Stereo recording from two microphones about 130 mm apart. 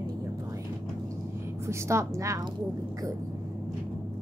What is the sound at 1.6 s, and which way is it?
Speech, 20° right (ahead or behind).